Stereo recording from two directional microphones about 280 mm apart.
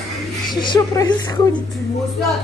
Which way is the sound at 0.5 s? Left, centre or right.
Centre.